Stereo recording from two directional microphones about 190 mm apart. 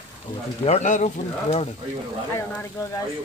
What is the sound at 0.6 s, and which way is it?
Speech, 35° left (ahead or behind).